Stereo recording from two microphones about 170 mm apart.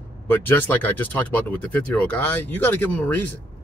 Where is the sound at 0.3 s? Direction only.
10° left (ahead or behind).